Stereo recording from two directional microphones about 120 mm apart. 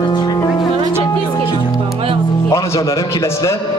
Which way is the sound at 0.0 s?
35° left (ahead or behind).